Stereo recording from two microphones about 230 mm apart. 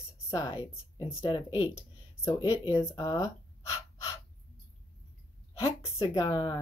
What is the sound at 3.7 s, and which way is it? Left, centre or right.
Gasp, centre.